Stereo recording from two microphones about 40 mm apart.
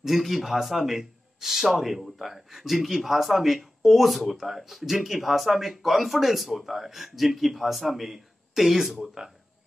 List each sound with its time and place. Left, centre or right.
0.0 s a man's voice: centre
9.2 s speech: centre